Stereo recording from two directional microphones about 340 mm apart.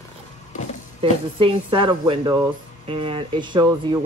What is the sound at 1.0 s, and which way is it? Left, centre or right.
Speech, centre.